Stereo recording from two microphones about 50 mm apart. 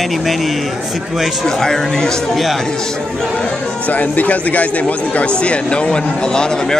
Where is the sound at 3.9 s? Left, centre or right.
Left.